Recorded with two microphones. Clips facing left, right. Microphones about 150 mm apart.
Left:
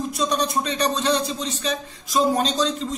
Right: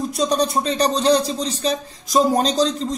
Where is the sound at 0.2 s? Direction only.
35° right (ahead or behind).